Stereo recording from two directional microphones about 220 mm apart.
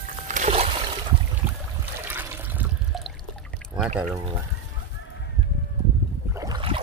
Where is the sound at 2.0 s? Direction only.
10° right (ahead or behind).